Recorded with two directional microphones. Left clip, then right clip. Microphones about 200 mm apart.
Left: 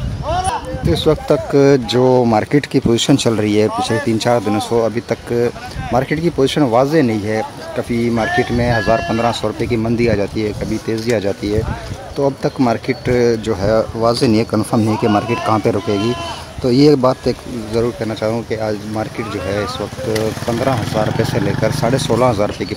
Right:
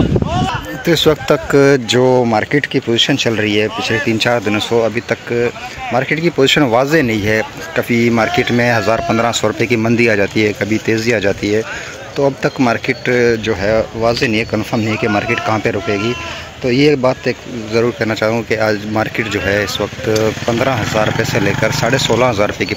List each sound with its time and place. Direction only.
0.8 s speech: 5° right (ahead or behind)
16.6 s speech: 15° left (ahead or behind)
17.8 s speech: 5° right (ahead or behind)